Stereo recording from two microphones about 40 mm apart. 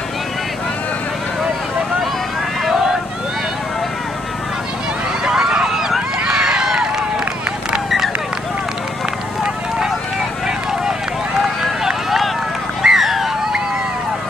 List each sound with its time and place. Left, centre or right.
2.6 s vehicle: centre
5.2 s run: centre
11.6 s run: centre
12.8 s a sound: centre